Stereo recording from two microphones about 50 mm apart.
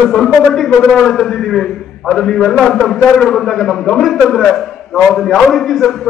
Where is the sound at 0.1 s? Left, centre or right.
Centre.